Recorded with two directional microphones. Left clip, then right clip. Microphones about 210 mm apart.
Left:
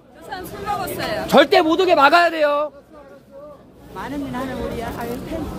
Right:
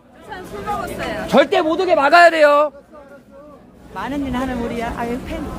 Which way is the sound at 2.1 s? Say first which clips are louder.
Right 5 dB; 20° right (ahead or behind).